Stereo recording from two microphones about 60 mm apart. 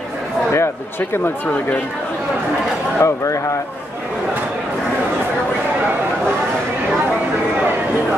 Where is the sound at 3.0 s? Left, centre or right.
Left.